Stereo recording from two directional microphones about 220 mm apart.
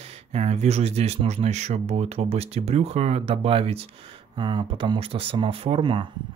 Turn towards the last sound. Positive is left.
turn(degrees=-20)  # may be behind; listen again after turning